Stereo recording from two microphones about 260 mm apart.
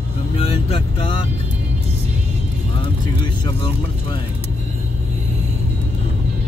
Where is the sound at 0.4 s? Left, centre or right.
Left.